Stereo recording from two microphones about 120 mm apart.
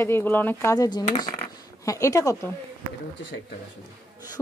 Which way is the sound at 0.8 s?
35° left (ahead or behind).